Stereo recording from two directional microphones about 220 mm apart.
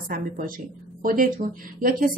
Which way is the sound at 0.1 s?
40° right (ahead or behind).